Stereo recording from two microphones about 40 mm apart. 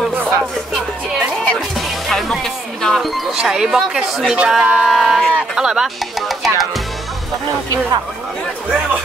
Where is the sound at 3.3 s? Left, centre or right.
Centre.